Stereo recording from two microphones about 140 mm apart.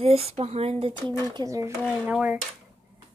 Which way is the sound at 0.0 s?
45° right (ahead or behind).